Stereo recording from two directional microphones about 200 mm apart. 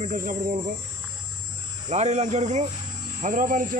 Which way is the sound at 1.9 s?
35° right (ahead or behind).